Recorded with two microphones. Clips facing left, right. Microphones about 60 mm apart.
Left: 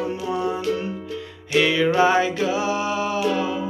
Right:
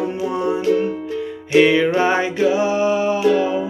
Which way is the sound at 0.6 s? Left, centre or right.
Right.